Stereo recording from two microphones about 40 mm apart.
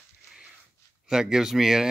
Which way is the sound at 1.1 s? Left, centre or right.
Centre.